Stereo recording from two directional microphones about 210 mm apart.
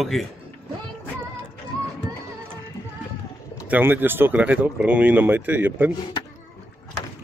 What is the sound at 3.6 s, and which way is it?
Speech, 10° right (ahead or behind).